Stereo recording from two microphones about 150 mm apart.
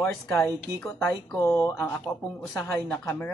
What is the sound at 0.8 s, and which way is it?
A man's voice, 15° left (ahead or behind).